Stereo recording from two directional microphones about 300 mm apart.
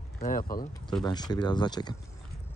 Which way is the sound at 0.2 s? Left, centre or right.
Left.